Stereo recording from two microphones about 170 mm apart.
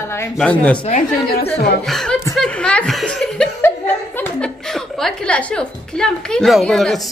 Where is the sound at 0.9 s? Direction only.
45° left (ahead or behind).